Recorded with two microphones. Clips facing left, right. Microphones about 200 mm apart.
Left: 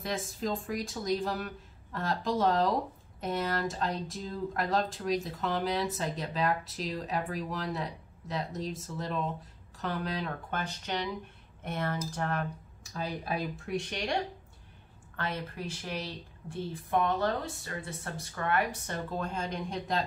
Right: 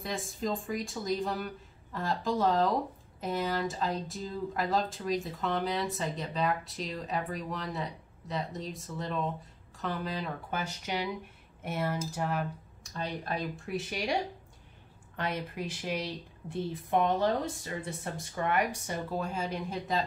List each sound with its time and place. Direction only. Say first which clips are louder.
0.0 s speech: left 1 dB; centre (ahead or behind)